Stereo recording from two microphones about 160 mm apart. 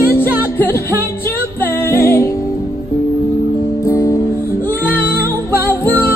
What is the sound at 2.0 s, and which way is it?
Music, 15° left (ahead or behind).